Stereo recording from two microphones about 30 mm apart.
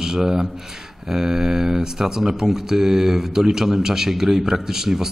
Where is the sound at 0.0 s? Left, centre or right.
Centre.